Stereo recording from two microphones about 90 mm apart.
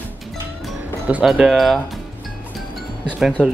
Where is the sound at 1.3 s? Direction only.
Centre (ahead or behind).